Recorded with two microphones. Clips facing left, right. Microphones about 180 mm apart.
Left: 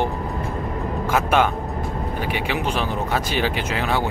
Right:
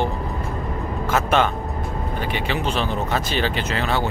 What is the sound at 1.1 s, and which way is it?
Speech, 10° left (ahead or behind).